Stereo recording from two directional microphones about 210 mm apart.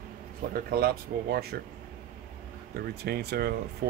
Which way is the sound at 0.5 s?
45° right (ahead or behind).